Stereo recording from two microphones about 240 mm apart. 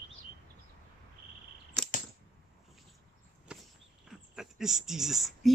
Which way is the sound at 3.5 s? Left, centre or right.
Centre.